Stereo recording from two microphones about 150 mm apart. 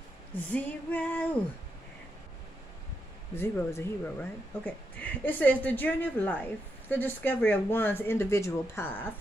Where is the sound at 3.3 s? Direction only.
15° left (ahead or behind).